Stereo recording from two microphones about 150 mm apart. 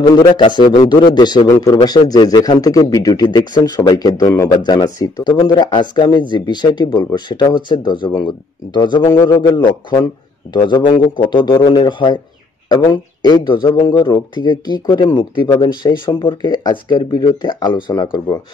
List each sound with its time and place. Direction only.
0.0 s a man's voice: 30° left (ahead or behind)